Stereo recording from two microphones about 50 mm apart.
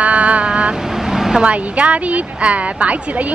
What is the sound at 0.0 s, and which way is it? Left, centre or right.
Vehicle, right.